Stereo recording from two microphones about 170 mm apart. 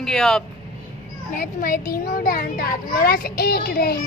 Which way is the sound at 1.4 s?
55° left (ahead or behind).